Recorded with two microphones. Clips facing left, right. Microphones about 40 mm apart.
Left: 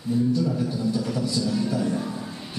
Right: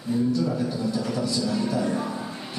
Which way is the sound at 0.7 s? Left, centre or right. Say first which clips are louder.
Left 1 dB; centre.